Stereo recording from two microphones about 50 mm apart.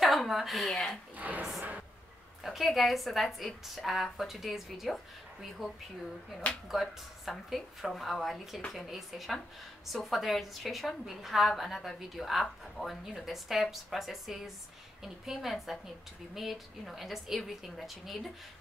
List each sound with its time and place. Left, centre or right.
0.3 s a woman's voice: centre
1.1 s speech: right
2.4 s a woman's voice: centre